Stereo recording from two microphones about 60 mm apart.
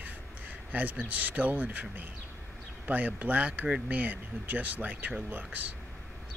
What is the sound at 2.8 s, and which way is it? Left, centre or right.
Speech, right.